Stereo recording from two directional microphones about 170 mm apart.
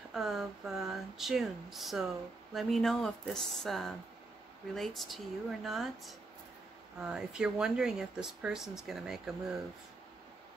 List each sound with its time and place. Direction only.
0.1 s speech: centre (ahead or behind)